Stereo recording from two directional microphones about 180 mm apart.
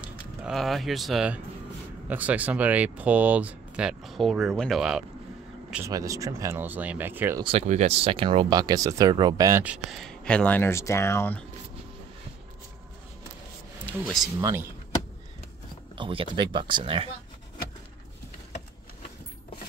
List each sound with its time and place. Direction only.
0.4 s speech: centre (ahead or behind)
5.9 s speech: 20° right (ahead or behind)
7.4 s speech: 35° right (ahead or behind); by 11.4 s 10° left (ahead or behind)
13.8 s speech: 5° left (ahead or behind)
14.2 s speech: 15° right (ahead or behind)
16.0 s speech: 30° right (ahead or behind)